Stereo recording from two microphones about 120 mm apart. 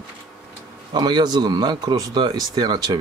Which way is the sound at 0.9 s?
40° right (ahead or behind).